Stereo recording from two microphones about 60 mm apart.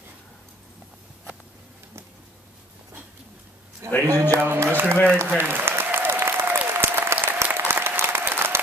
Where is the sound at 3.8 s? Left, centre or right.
Right.